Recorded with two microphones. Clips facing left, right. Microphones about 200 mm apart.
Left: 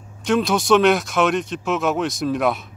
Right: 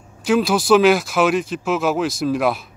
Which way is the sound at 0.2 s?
Centre (ahead or behind).